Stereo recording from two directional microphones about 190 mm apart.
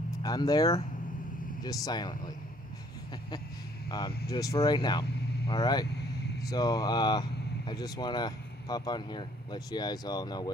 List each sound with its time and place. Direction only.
0.2 s speech: 20° left (ahead or behind)
4.3 s speech: 20° left (ahead or behind)